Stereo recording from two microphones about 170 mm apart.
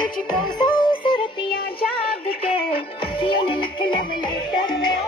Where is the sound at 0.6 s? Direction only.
30° left (ahead or behind).